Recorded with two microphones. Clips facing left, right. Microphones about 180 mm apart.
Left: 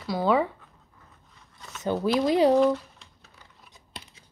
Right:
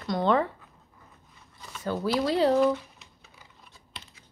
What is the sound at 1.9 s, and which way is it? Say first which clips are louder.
Speech: left 3 dB; 15° left (ahead or behind).